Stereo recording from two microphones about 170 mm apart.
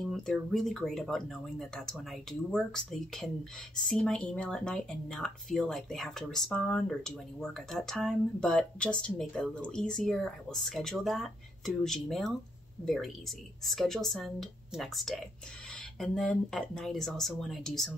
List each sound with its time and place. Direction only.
0.0 s speech: centre (ahead or behind)